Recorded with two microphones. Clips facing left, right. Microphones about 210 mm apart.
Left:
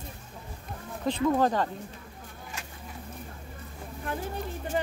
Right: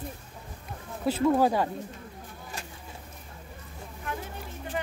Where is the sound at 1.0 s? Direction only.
5° right (ahead or behind).